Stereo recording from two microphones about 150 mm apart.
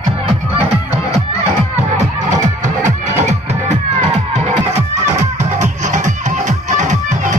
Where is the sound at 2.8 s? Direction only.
50° right (ahead or behind).